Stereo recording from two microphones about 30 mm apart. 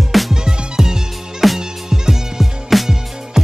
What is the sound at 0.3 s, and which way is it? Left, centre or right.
Music, centre.